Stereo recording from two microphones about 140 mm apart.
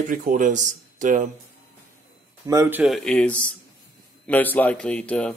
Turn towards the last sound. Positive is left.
turn(degrees=5)  # may be behind; listen again after turning